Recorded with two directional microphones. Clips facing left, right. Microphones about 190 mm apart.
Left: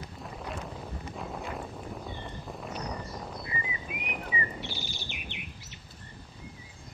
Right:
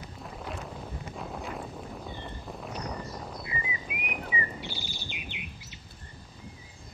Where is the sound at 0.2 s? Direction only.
Centre (ahead or behind).